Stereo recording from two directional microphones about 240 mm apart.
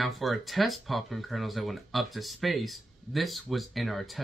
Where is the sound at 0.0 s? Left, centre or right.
Centre.